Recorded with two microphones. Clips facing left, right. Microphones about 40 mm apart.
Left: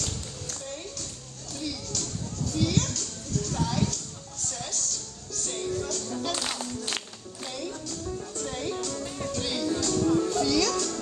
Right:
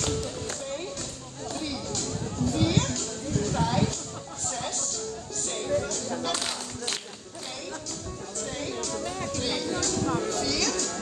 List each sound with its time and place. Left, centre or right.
1.5 s music: right
8.4 s music: centre
8.9 s music: centre
9.3 s music: centre
10.0 s music: right
10.3 s music: centre